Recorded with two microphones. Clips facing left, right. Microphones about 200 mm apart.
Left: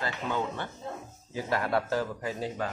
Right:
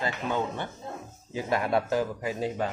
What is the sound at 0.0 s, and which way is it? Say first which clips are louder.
A man's voice: right 2 dB; 15° right (ahead or behind).